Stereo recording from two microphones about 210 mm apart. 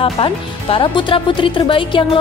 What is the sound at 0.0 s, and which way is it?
Speech, 25° left (ahead or behind).